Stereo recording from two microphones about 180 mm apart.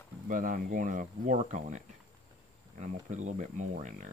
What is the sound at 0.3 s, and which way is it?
Speech, 50° right (ahead or behind).